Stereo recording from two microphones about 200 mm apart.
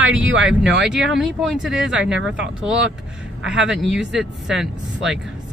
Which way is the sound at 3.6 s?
Centre (ahead or behind).